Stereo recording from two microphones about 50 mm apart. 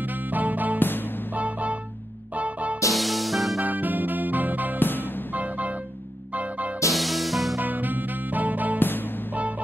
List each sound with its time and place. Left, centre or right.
0.0 s music: right
0.7 s music: left
1.3 s music: right
2.9 s music: centre
3.6 s music: right
4.7 s music: left
5.3 s music: right
6.9 s music: centre
7.6 s music: right
8.7 s music: left